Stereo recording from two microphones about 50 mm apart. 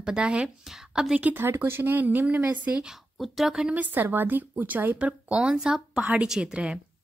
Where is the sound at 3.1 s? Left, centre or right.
Centre.